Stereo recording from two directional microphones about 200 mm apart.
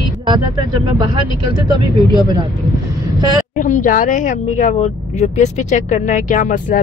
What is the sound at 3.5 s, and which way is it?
Speech, 40° left (ahead or behind).